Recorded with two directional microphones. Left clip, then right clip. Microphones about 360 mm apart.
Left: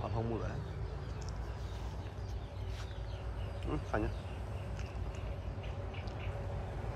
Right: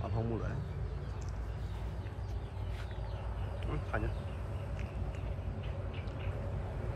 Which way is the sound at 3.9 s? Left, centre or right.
Centre.